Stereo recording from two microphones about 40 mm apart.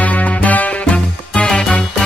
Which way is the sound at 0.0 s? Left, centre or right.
Left.